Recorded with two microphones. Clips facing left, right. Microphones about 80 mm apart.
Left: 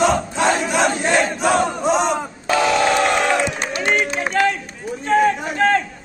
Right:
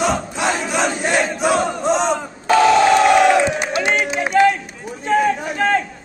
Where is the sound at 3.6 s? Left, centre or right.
Centre.